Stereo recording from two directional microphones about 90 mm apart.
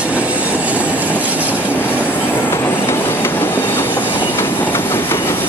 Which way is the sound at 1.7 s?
20° left (ahead or behind).